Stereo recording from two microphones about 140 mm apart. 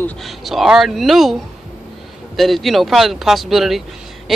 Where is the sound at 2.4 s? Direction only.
Centre (ahead or behind).